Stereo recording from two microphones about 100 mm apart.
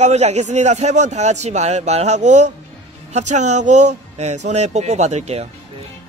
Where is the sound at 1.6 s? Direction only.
90° right.